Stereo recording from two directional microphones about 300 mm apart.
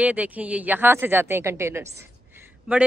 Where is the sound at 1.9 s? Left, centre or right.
Centre.